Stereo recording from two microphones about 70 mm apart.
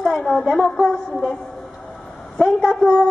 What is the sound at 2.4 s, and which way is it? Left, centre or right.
Speech, centre.